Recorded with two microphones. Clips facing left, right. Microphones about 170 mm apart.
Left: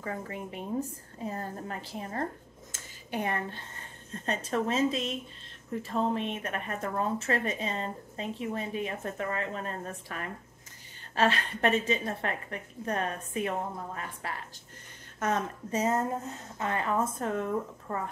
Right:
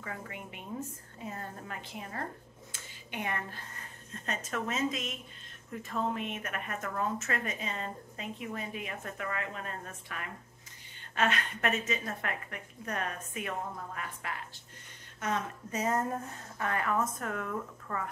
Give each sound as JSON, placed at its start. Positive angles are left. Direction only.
{"t": 0.0, "sound": "a woman's voice", "side_deg": 35}
{"t": 15.1, "sound": "a woman's voice", "side_deg": 45}
{"t": 15.7, "sound": "a woman's voice", "side_deg": 25}